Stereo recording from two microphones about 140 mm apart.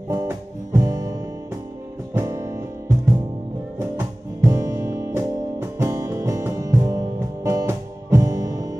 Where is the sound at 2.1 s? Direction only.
20° right (ahead or behind).